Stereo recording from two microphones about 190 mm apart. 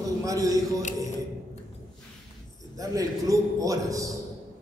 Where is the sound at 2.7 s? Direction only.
20° right (ahead or behind).